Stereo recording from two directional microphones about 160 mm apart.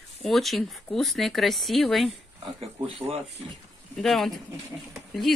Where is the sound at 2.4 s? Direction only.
35° right (ahead or behind).